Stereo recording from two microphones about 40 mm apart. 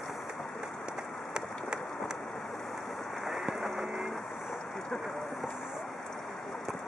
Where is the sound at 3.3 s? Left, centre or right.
Centre.